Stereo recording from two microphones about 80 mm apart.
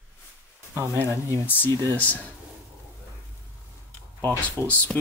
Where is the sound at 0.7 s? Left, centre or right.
Right.